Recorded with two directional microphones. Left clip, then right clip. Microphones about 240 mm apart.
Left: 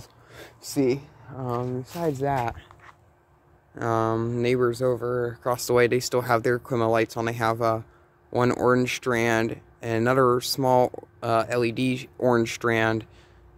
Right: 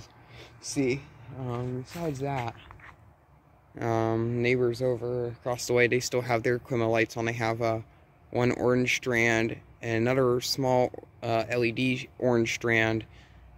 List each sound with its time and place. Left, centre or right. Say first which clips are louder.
0.3 s speech: left 2 dB; left
3.7 s speech: left 3 dB; centre